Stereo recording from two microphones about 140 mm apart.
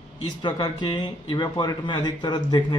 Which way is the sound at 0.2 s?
30° left (ahead or behind).